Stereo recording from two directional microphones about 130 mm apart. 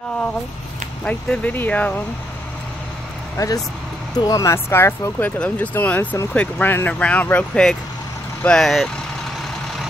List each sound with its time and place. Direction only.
1.0 s speech: 10° left (ahead or behind)
3.3 s speech: 30° left (ahead or behind); by 8.9 s 5° left (ahead or behind)